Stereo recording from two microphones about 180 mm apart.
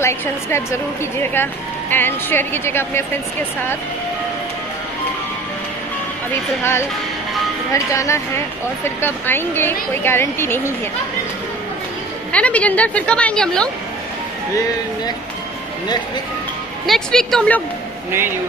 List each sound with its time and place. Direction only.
0.0 s a woman's voice: 15° left (ahead or behind)
7.7 s a woman's voice: 15° left (ahead or behind)
12.3 s a woman's voice: 5° left (ahead or behind)
16.8 s speech: centre (ahead or behind)